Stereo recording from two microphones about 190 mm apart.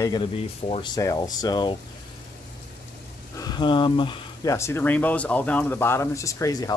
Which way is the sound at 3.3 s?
20° left (ahead or behind).